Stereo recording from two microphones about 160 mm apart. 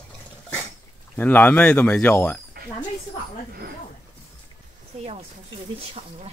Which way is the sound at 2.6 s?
70° right (ahead or behind).